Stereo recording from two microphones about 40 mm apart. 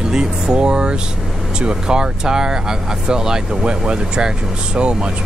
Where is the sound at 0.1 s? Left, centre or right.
Centre.